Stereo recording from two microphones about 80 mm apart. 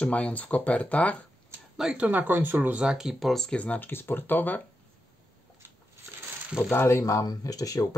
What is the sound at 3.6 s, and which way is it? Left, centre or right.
Speech, left.